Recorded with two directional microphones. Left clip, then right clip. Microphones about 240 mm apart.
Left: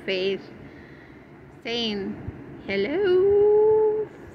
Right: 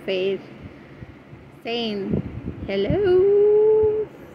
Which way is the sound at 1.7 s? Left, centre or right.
Centre.